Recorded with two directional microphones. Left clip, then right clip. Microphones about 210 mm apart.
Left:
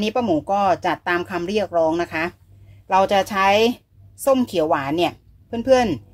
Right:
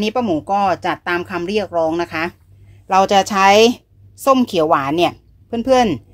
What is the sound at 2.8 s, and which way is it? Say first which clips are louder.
A woman's voice: right 4 dB; 25° right (ahead or behind).